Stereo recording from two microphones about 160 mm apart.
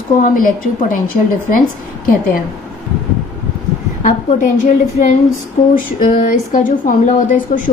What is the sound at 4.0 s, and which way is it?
A woman's voice, 55° left (ahead or behind).